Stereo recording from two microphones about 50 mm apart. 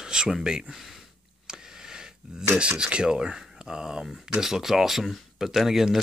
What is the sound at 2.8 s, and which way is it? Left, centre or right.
Speech, centre.